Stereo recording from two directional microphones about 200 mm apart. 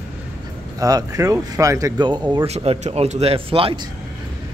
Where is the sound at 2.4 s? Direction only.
30° right (ahead or behind).